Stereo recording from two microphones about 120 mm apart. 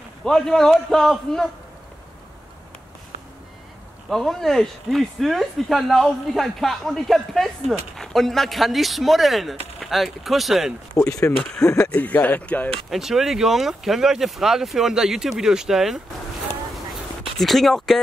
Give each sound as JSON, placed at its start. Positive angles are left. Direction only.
{"t": 0.2, "sound": "speech", "side_deg": 5}
{"t": 4.1, "sound": "speech", "side_deg": 0}
{"t": 11.0, "sound": "speech", "side_deg": 25}
{"t": 11.8, "sound": "speech", "side_deg": 10}
{"t": 17.4, "sound": "speech", "side_deg": 0}